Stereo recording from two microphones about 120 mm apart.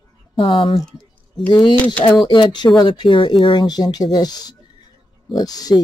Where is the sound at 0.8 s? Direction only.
5° left (ahead or behind).